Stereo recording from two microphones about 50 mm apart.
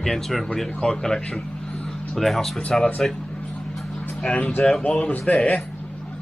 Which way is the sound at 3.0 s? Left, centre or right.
Centre.